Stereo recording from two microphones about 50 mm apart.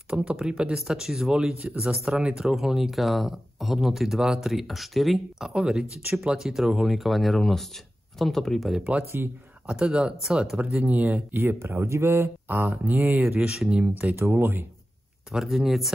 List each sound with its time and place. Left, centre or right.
0.2 s speech: right
1.5 s speech: right
1.8 s speech: centre
2.4 s speech: centre
5.5 s speech: centre
9.2 s speech: right
9.7 s speech: centre
10.8 s speech: right
14.2 s speech: right
15.3 s speech: centre